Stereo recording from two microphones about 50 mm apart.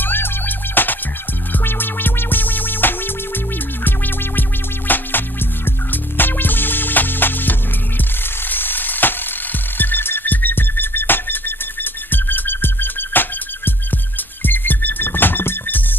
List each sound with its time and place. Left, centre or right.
0.0 s music: left